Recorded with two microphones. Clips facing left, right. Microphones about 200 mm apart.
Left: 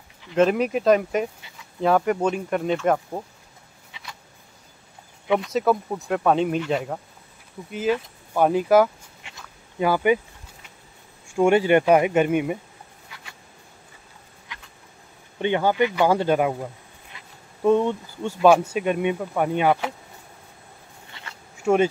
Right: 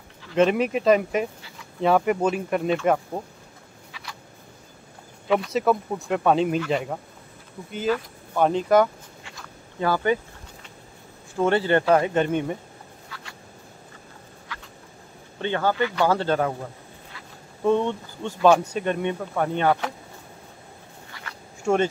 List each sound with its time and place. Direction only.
0.4 s speech: centre (ahead or behind)
5.5 s speech: centre (ahead or behind)
8.4 s speech: 10° left (ahead or behind)
9.2 s a sound: 15° left (ahead or behind)
11.3 s speech: 15° left (ahead or behind)
14.5 s a sound: 20° left (ahead or behind)
15.3 s speech: 15° left (ahead or behind)
17.6 s speech: 5° left (ahead or behind)